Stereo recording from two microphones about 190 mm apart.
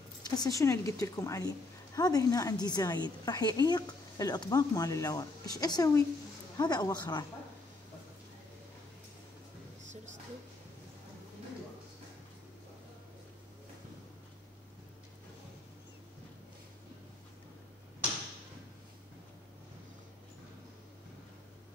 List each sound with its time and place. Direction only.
0.2 s a woman's voice: 20° left (ahead or behind)